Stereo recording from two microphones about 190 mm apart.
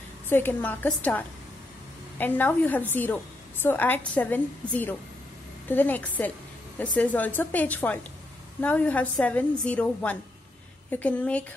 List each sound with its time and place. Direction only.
0.3 s a woman's voice: 10° left (ahead or behind)